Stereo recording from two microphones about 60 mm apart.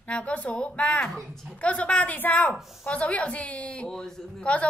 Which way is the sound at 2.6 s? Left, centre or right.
Centre.